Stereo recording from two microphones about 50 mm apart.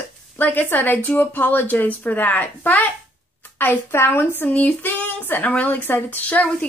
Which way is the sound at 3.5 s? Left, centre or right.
Left.